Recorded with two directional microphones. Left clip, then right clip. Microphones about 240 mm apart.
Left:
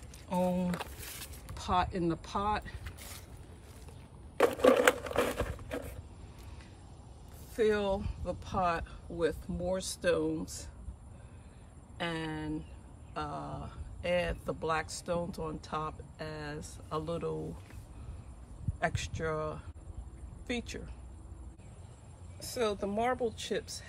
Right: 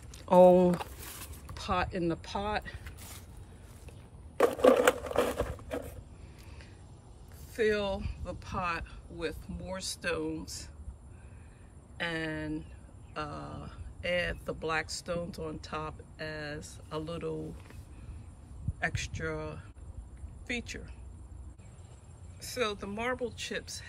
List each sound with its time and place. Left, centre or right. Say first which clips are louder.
0.1 s a sound: right 13 dB; centre
1.5 s speech: left 1 dB; centre
4.4 s crushing: right 2 dB; centre
7.5 s speech: even; centre
12.0 s speech: right 2 dB; centre
18.8 s speech: even; centre
22.4 s speech: left 1 dB; centre